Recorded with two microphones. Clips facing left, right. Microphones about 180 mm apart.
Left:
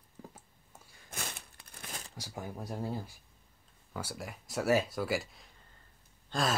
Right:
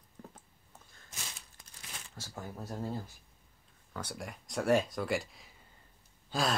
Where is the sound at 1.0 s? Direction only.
55° left (ahead or behind).